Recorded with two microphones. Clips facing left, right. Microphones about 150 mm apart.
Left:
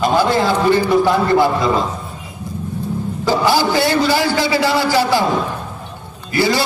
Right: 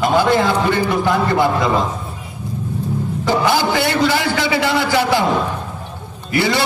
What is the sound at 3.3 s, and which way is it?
A man's voice, 20° right (ahead or behind).